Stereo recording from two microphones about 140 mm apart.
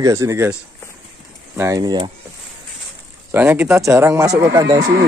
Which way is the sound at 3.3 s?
10° right (ahead or behind).